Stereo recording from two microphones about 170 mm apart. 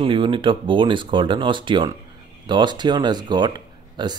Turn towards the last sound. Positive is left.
turn(degrees=-25)  # may be behind; listen again after turning